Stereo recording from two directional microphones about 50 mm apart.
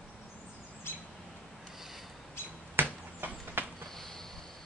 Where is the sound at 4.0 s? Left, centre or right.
Centre.